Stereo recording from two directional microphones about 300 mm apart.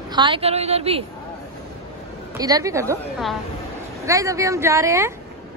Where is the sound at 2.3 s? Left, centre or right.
Centre.